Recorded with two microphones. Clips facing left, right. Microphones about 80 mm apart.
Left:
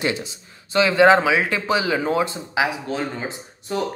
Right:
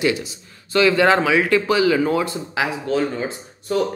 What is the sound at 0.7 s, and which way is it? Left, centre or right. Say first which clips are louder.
Speech: left 1 dB; left.